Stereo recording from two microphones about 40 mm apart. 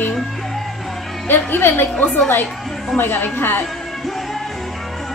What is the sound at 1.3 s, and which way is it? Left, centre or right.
Speech, left.